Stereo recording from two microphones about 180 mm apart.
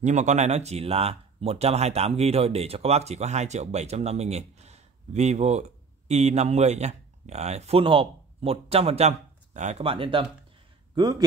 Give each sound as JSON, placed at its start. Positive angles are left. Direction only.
{"t": 0.0, "sound": "speech", "side_deg": -40}